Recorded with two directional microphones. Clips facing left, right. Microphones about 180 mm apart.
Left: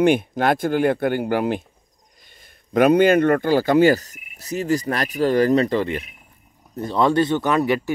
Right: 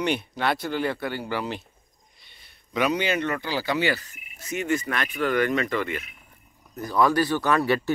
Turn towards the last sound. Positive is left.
turn(degrees=15)  # may be behind; listen again after turning